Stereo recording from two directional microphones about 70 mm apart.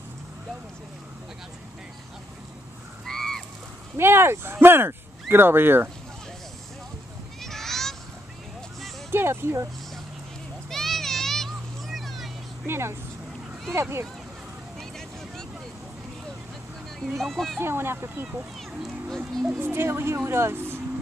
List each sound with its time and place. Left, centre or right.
3.1 s a sound: centre
3.9 s speech: right
7.4 s a sound: centre
9.1 s speech: right
10.7 s a sound: centre
12.6 s speech: right
14.8 s vehicle: centre
17.0 s speech: centre
17.6 s speech: right
18.7 s speech: centre
19.6 s speech: right